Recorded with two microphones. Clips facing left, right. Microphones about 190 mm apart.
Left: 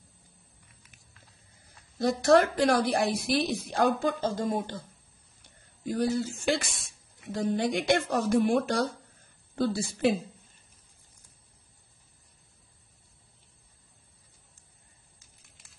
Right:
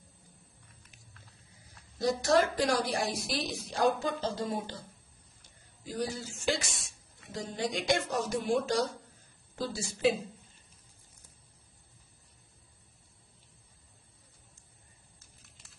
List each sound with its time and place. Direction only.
2.0 s a woman's voice: 55° left (ahead or behind)